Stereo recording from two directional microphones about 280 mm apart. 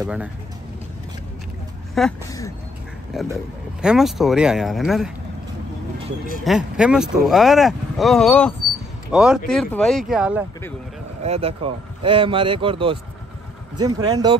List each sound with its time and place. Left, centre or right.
0.0 s speech: centre
2.0 s speech: centre
3.1 s speech: centre
6.4 s speech: centre
11.2 s a man's voice: right